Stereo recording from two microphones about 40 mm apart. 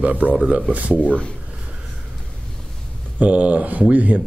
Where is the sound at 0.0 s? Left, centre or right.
Right.